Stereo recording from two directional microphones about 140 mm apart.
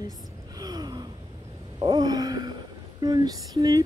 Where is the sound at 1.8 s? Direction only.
30° right (ahead or behind).